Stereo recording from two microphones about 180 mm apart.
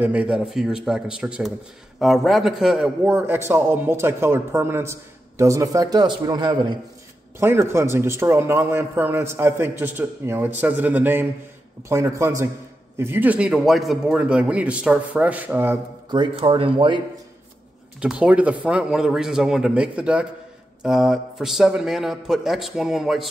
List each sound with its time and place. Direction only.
0.0 s a man's voice: 5° right (ahead or behind); by 6.8 s 25° right (ahead or behind)
7.3 s a man's voice: 15° right (ahead or behind)
16.1 s a man's voice: 25° right (ahead or behind)
18.0 s a man's voice: 5° right (ahead or behind)